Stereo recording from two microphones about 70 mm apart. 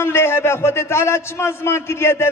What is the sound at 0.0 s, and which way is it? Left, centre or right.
A man's voice, left.